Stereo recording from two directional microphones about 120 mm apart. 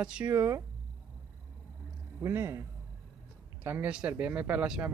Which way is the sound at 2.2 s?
20° right (ahead or behind).